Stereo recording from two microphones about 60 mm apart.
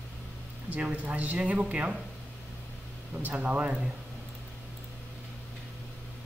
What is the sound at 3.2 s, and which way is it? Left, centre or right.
Speech, right.